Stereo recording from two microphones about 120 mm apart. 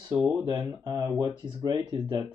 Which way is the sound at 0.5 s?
30° right (ahead or behind).